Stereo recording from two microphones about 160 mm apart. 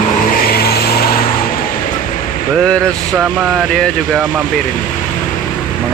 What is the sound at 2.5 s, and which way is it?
Speech, 5° left (ahead or behind).